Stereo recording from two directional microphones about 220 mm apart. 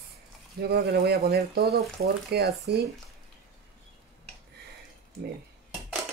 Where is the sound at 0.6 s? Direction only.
45° right (ahead or behind).